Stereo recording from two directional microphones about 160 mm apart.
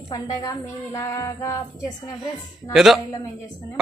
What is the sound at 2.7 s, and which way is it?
Speech, centre (ahead or behind).